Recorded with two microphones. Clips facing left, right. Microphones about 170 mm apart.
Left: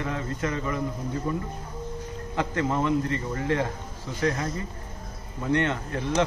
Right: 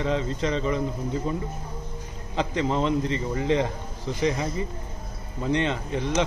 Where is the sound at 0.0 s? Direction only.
20° right (ahead or behind).